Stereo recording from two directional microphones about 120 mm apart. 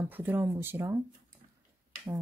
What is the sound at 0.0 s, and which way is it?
Speech, 15° right (ahead or behind).